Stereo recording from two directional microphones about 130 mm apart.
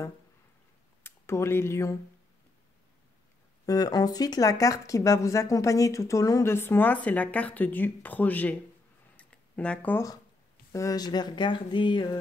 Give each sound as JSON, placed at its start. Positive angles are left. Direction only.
{"t": 1.0, "sound": "speech", "side_deg": 20}
{"t": 3.6, "sound": "speech", "side_deg": 30}
{"t": 9.1, "sound": "a sound", "side_deg": 10}
{"t": 10.7, "sound": "speech", "side_deg": 25}